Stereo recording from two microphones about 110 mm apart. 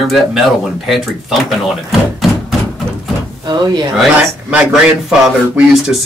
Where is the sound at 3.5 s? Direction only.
40° right (ahead or behind).